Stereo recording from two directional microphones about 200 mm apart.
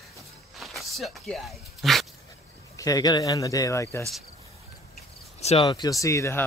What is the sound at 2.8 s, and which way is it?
Speech, 20° left (ahead or behind).